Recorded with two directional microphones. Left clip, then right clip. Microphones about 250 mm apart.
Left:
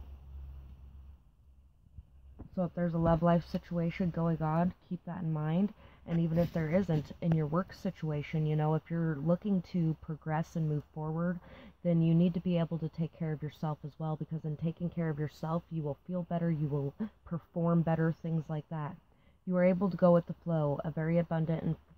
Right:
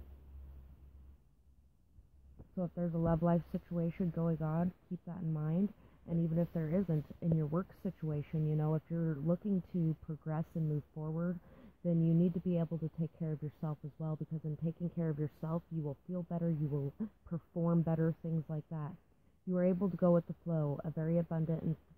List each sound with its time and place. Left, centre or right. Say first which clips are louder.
2.5 s speech: left 5 dB; centre